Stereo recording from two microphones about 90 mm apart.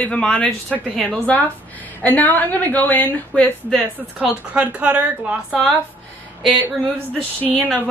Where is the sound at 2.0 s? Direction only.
20° left (ahead or behind).